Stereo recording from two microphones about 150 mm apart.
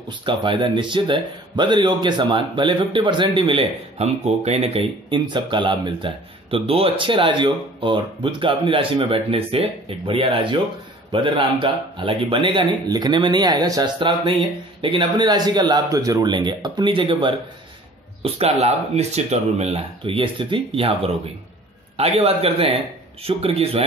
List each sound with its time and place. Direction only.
0.2 s speech: 30° right (ahead or behind)